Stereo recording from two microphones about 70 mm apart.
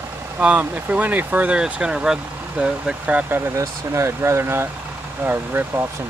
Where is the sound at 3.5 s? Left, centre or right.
Right.